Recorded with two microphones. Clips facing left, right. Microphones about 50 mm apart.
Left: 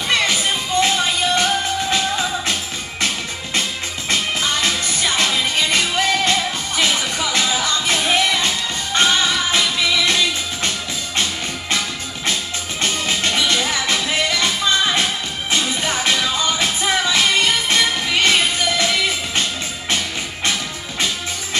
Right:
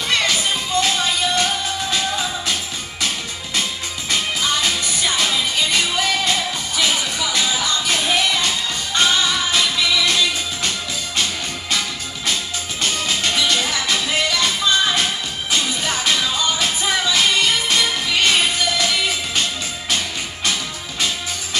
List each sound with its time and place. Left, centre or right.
0.3 s music: left
4.1 s music: left
12.8 s music: left